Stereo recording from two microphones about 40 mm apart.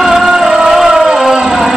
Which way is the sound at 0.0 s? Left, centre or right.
Centre.